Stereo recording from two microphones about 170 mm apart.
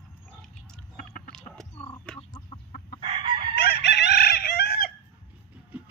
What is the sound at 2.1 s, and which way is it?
Chicken, 5° left (ahead or behind).